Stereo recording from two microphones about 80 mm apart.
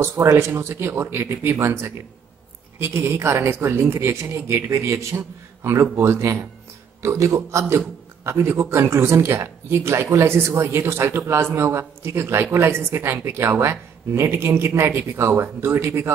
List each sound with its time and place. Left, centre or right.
0.0 s a woman's voice: right